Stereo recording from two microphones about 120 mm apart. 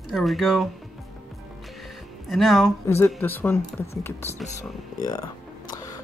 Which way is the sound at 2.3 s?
Centre (ahead or behind).